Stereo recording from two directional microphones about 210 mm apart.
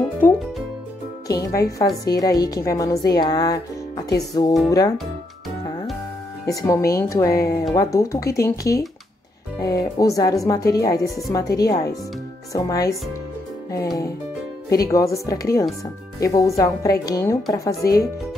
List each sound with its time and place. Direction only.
0.2 s speech: 10° left (ahead or behind)
6.6 s speech: 15° left (ahead or behind)
14.7 s speech: 15° left (ahead or behind)